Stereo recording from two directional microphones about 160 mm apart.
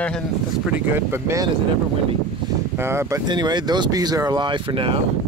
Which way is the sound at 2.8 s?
15° right (ahead or behind).